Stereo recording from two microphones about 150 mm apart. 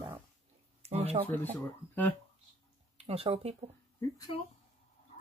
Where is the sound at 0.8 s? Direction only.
45° right (ahead or behind).